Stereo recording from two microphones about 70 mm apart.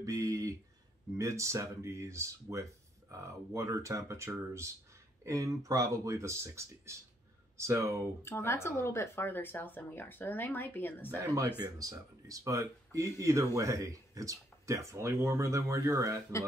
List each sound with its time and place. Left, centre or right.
0.0 s a sound: right
1.1 s speech: right
8.2 s speech: left
11.6 s speech: right